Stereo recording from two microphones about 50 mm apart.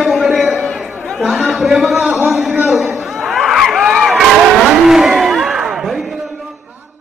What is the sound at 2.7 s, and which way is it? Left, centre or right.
Chuckle, centre.